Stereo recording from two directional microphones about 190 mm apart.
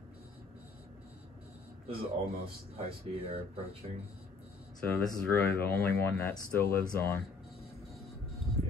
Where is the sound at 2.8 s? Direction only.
30° right (ahead or behind).